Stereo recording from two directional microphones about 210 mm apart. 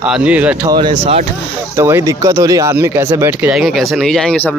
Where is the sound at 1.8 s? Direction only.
10° right (ahead or behind).